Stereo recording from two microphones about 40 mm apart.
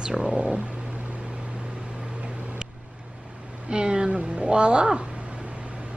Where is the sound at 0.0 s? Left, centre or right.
Centre.